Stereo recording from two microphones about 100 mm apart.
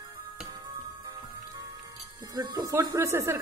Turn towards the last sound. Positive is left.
turn(degrees=-30)  # may be behind; listen again after turning